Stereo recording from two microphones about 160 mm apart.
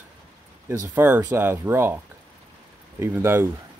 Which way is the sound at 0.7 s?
15° right (ahead or behind).